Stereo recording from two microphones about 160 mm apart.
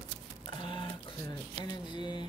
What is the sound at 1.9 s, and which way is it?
Speech, 30° left (ahead or behind).